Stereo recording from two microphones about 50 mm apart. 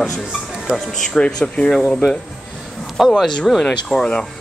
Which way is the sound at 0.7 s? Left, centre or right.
Centre.